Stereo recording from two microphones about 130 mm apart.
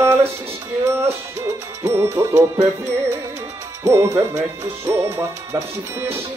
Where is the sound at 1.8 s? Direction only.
20° right (ahead or behind).